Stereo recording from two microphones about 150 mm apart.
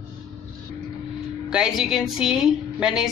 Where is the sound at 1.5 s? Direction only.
Centre (ahead or behind).